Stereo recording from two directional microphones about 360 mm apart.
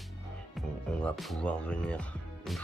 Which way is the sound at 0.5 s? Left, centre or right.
Centre.